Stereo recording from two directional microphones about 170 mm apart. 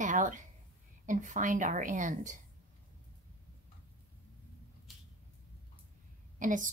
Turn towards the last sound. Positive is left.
turn(degrees=-50)  # may be behind; listen again after turning